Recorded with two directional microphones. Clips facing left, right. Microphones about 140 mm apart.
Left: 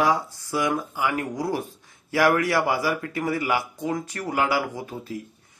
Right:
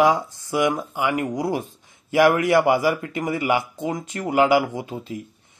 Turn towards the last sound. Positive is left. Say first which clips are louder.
# right 3 dB
turn(degrees=-20)  # may be behind; listen again after turning